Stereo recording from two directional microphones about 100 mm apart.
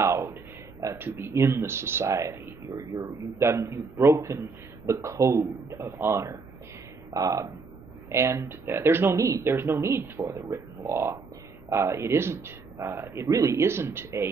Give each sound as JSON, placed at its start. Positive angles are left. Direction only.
{"t": 0.0, "sound": "speech", "side_deg": -30}